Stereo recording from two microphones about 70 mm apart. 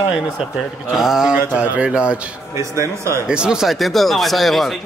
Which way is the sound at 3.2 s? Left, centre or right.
Centre.